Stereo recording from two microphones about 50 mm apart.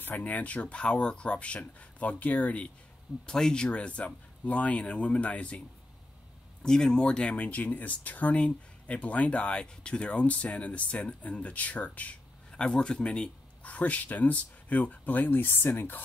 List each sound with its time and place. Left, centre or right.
0.0 s speech: left
3.3 s speech: centre
6.6 s speech: centre; by 12.2 s left
12.4 s speech: centre; by 16.0 s left